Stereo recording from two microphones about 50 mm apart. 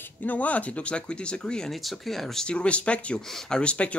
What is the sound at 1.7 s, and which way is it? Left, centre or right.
Speech, centre.